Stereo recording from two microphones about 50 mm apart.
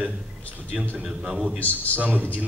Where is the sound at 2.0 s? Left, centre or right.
Right.